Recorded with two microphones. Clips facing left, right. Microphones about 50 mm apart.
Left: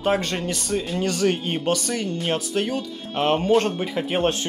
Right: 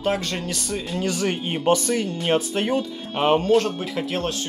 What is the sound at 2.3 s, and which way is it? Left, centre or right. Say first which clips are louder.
Speech: right 5 dB; right.